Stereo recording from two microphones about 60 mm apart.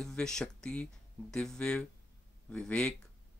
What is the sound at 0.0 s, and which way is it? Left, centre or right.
Speech, centre.